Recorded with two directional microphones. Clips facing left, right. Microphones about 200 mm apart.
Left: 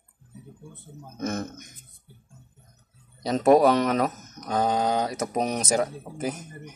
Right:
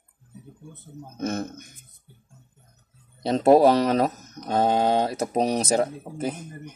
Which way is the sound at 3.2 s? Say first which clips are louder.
Right 2 dB; 30° right (ahead or behind).